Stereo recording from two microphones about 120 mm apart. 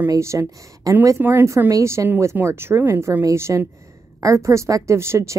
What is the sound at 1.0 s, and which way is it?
Speech, 20° right (ahead or behind).